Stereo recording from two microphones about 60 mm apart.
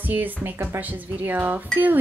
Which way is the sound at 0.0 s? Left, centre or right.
Right.